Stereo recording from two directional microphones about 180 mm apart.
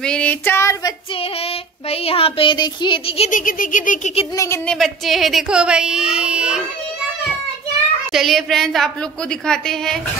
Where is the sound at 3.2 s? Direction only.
50° left (ahead or behind).